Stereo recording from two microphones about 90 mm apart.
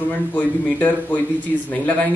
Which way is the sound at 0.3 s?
20° left (ahead or behind).